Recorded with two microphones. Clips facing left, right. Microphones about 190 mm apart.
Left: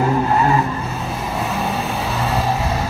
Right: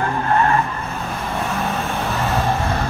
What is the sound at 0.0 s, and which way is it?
Vehicle, 5° left (ahead or behind).